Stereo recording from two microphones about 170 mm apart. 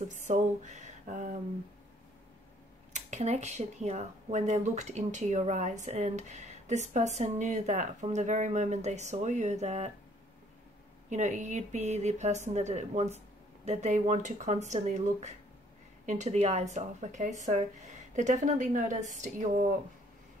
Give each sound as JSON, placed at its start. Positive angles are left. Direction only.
{"t": 0.1, "sound": "a sound", "side_deg": -45}
{"t": 2.9, "sound": "speech", "side_deg": -40}
{"t": 11.1, "sound": "a woman's voice", "side_deg": -45}